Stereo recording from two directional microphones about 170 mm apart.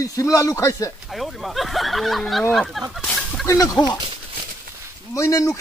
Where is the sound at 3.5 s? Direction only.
20° left (ahead or behind).